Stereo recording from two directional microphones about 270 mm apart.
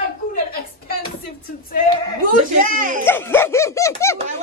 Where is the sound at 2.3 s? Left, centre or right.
Right.